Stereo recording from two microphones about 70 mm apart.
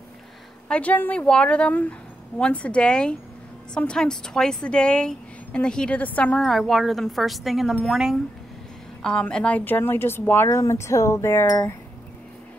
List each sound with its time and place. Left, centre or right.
0.7 s a woman's voice: centre
1.2 s a woman's voice: centre
5.9 s a woman's voice: left
6.4 s speech: centre
9.0 s a woman's voice: centre
9.7 s speech: left
10.7 s speech: left